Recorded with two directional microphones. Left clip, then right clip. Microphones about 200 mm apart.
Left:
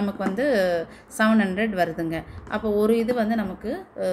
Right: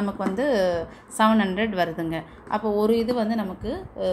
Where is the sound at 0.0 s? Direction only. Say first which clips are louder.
Even; centre (ahead or behind).